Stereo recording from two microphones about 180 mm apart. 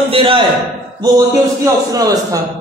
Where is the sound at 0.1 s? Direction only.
30° right (ahead or behind).